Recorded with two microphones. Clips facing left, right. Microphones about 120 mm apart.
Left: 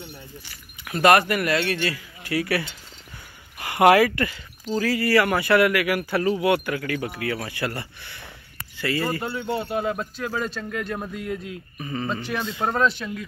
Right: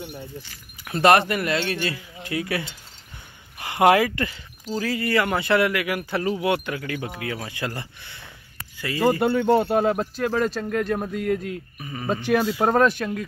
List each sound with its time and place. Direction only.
0.8 s speech: 30° right (ahead or behind)
9.2 s speech: 70° right (ahead or behind)
9.5 s speech: 45° right (ahead or behind)
11.8 s speech: 10° right (ahead or behind)
12.3 s speech: 60° right (ahead or behind)